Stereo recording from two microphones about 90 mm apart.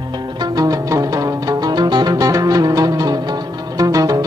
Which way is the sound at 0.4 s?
45° right (ahead or behind).